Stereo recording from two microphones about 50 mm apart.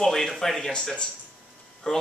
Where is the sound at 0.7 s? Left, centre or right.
Centre.